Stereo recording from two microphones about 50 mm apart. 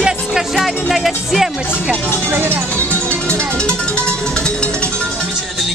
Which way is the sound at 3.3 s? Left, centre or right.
Centre.